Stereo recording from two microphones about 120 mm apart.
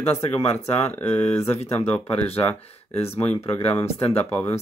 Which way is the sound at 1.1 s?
55° left (ahead or behind).